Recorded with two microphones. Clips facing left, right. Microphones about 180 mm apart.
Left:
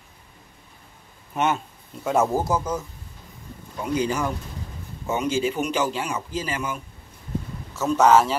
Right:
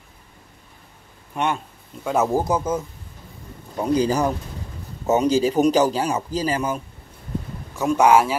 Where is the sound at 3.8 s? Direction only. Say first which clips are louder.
Right 5 dB; 35° right (ahead or behind).